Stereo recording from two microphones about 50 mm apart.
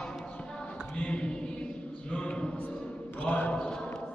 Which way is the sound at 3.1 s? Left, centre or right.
Left.